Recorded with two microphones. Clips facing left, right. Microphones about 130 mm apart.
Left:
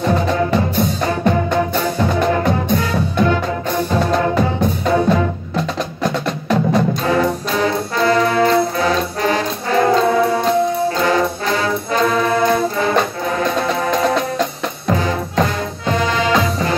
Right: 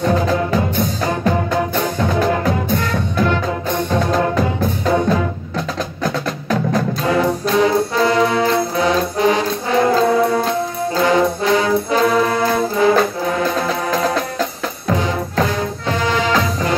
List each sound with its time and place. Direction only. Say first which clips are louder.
0.0 s music: even; centre (ahead or behind)
8.0 s brass instrument: left 3 dB; 5° right (ahead or behind)
9.2 s brass instrument: right 2 dB; 15° right (ahead or behind)
9.9 s music: even; centre (ahead or behind)
11.5 s brass instrument: right 4 dB; 15° right (ahead or behind)
12.0 s music: left 3 dB; 5° right (ahead or behind)